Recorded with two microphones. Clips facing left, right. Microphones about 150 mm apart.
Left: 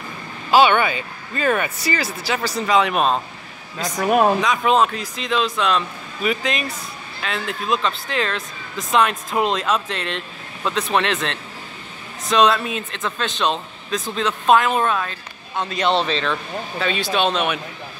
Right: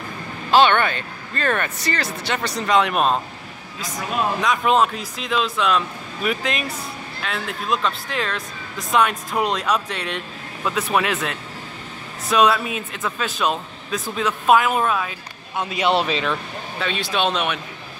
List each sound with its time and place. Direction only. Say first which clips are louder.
0.5 s speech: left 1 dB; 10° left (ahead or behind)
3.7 s speech: left 8 dB; 60° left (ahead or behind)
4.4 s speech: left 1 dB; centre (ahead or behind)